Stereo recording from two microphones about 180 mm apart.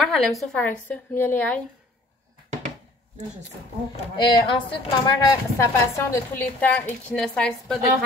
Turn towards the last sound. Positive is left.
turn(degrees=5)  # may be behind; listen again after turning